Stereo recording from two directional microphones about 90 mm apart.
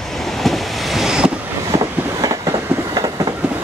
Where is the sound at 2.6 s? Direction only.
25° right (ahead or behind).